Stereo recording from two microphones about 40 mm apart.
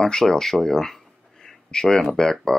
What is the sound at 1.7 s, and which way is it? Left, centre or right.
Speech, centre.